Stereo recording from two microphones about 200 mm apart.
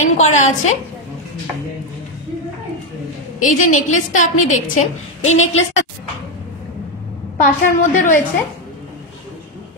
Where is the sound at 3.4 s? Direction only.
40° left (ahead or behind).